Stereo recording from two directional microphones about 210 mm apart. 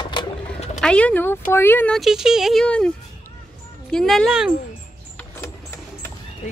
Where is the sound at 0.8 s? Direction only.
5° left (ahead or behind).